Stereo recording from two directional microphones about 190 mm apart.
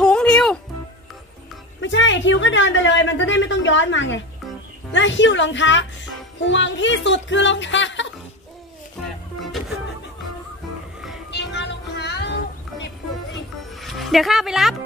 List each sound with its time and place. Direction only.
0.0 s music: 5° left (ahead or behind)
1.8 s a woman's voice: 75° left (ahead or behind)
11.2 s music: 65° left (ahead or behind)
13.7 s speech: centre (ahead or behind)